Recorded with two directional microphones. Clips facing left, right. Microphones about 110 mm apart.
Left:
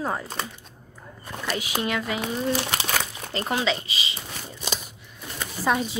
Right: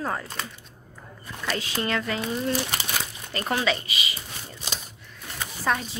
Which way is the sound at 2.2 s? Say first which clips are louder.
Left 1 dB; 90° left.